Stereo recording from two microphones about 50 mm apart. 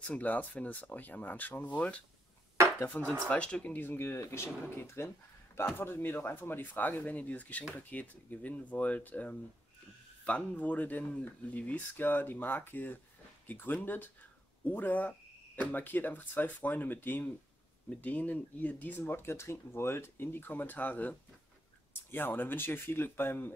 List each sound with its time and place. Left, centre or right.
0.0 s speech: left
3.3 s speech: left
3.7 s speech: left
4.2 s speech: left
18.9 s speech: left